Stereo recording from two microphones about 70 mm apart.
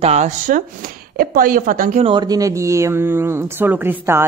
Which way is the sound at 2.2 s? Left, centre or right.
Right.